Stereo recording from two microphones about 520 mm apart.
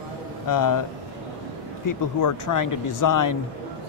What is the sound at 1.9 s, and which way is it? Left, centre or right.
Speech, left.